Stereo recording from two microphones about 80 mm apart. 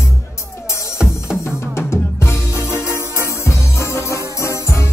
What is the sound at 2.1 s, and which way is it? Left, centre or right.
Music, left.